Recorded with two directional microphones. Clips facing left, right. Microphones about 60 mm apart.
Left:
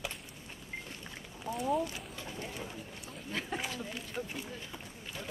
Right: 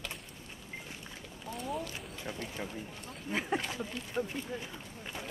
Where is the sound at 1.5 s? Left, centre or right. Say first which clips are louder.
Left 6 dB; centre.